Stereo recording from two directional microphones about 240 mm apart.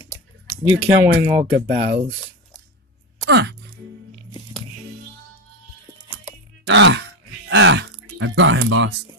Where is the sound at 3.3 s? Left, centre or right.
Right.